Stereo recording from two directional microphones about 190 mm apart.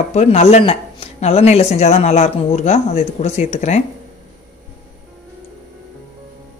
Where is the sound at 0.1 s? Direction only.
35° left (ahead or behind).